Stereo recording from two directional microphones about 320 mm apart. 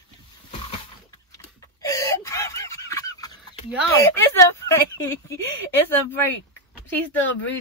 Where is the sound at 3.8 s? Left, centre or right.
Centre.